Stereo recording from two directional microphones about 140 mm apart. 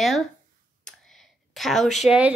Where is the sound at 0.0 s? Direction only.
Centre (ahead or behind).